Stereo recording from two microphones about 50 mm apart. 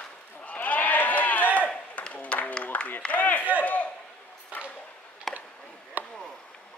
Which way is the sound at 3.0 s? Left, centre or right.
Left.